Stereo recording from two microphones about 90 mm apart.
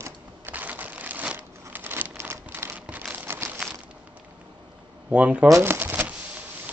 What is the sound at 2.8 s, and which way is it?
Crumpling, 15° right (ahead or behind).